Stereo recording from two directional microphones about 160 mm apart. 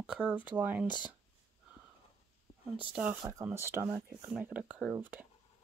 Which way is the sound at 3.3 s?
15° right (ahead or behind).